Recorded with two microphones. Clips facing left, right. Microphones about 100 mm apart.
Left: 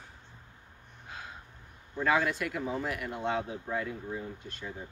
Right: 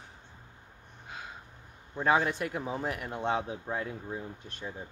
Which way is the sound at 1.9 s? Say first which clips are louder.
Right 1 dB; 30° right (ahead or behind).